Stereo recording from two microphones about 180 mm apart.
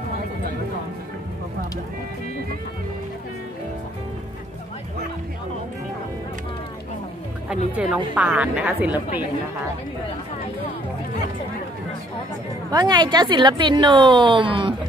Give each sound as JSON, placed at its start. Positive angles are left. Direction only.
{"t": 7.4, "sound": "a woman's voice", "side_deg": -5}
{"t": 12.7, "sound": "a woman's voice", "side_deg": -25}